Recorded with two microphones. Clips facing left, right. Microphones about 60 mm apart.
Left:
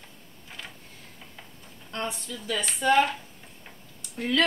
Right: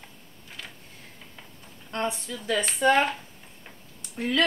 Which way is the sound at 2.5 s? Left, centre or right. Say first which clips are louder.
Right 1 dB; right.